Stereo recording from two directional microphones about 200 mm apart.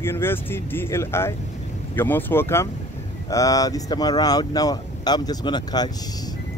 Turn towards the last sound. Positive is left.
turn(degrees=20)  # may be behind; listen again after turning